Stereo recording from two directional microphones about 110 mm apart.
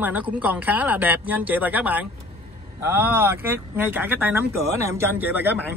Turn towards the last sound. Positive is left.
turn(degrees=-15)  # may be behind; listen again after turning